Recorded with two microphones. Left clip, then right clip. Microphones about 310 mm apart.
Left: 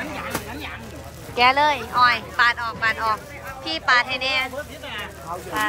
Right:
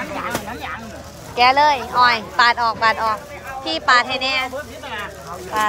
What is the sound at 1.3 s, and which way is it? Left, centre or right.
Speech, centre.